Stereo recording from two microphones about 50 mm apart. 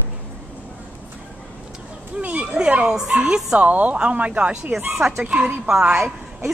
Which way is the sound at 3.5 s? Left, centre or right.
Right.